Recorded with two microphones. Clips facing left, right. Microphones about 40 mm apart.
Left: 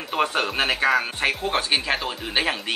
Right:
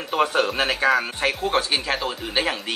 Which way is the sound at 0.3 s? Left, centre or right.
Centre.